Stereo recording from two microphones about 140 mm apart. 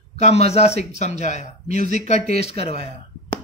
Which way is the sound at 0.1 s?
50° left (ahead or behind).